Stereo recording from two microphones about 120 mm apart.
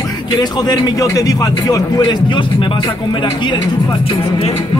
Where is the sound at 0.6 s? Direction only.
35° left (ahead or behind).